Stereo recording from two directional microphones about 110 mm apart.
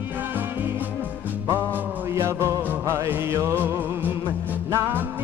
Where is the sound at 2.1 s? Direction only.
25° right (ahead or behind).